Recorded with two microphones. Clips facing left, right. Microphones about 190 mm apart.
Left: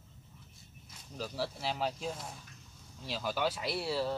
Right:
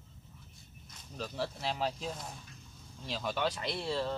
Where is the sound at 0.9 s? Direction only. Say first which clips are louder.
Even; 5° left (ahead or behind).